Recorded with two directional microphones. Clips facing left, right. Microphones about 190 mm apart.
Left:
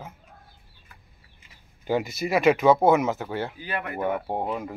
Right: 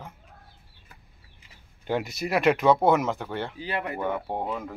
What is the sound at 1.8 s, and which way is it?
Speech, centre (ahead or behind).